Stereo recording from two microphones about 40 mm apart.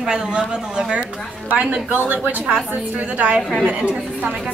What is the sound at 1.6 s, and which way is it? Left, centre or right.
Speech, right.